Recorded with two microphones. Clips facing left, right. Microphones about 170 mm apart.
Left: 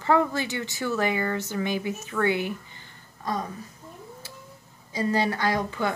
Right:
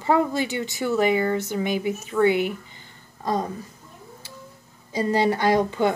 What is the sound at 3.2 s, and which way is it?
Speech, 30° right (ahead or behind).